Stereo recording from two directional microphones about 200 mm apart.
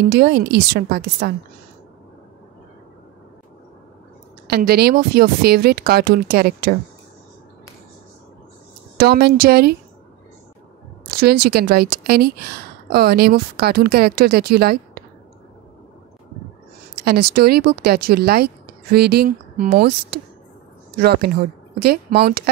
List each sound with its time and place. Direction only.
0.0 s a woman's voice: 55° right (ahead or behind)
4.5 s a woman's voice: 50° right (ahead or behind)
8.9 s a woman's voice: 50° right (ahead or behind)
11.1 s a woman's voice: 50° right (ahead or behind)
17.0 s a woman's voice: 50° right (ahead or behind)